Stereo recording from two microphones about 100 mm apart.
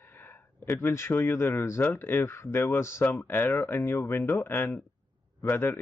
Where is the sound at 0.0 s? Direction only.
20° left (ahead or behind).